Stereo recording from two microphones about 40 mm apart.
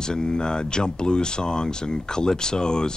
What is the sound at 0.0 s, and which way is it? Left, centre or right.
Speech, centre.